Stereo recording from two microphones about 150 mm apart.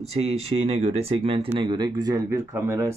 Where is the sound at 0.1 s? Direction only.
45° right (ahead or behind).